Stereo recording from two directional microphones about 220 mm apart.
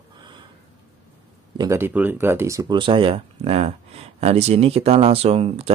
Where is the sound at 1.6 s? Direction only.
10° right (ahead or behind).